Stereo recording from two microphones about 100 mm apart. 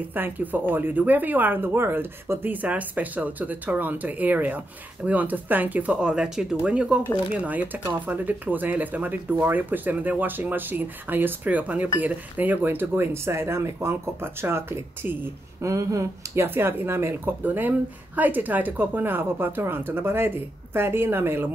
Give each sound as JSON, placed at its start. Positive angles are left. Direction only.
{"t": 0.1, "sound": "speech", "side_deg": -20}